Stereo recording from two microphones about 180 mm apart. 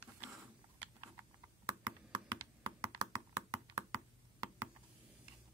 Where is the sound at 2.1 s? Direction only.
25° right (ahead or behind).